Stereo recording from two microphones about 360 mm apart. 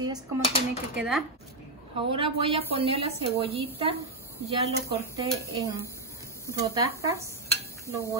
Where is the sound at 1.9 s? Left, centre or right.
Centre.